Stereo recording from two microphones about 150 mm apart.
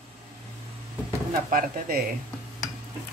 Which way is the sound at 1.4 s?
65° right (ahead or behind).